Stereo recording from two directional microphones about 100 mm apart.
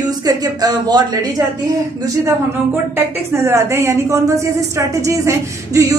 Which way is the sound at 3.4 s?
25° right (ahead or behind).